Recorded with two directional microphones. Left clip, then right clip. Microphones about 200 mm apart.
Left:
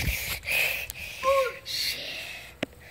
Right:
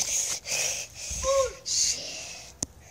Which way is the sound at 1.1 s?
25° right (ahead or behind).